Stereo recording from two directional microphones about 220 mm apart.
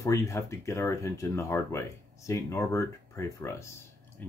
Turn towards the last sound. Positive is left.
turn(degrees=15)  # may be behind; listen again after turning